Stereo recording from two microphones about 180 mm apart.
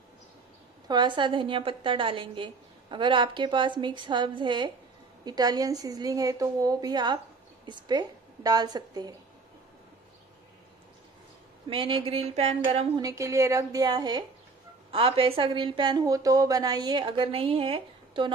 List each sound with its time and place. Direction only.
0.8 s a woman's voice: 25° right (ahead or behind)
11.7 s a sound: 30° right (ahead or behind)
13.0 s a woman's voice: 15° right (ahead or behind)